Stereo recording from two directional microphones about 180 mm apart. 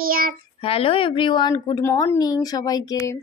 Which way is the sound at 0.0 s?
50° right (ahead or behind).